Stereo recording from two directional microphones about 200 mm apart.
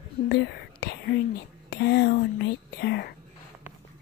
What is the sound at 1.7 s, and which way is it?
Speech, 55° left (ahead or behind).